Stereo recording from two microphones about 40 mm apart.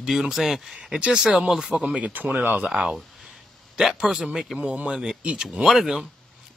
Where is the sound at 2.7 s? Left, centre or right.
Right.